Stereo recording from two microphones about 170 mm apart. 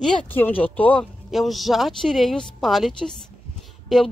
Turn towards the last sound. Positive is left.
turn(degrees=0)  # may be behind; listen again after turning